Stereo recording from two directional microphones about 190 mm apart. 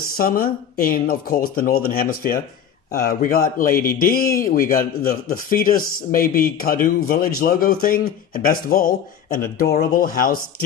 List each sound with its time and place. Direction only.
0.2 s speech: 50° left (ahead or behind)